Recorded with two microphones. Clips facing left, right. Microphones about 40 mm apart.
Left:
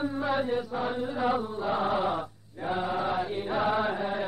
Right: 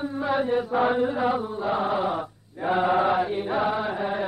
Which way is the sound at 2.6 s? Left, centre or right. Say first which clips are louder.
Right 8 dB; right.